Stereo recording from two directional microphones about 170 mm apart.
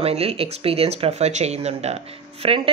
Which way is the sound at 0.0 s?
35° right (ahead or behind).